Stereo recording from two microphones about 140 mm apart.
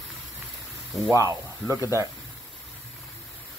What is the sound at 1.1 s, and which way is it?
Speech, 15° right (ahead or behind).